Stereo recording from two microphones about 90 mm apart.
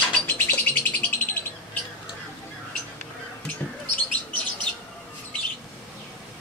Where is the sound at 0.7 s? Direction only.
20° left (ahead or behind).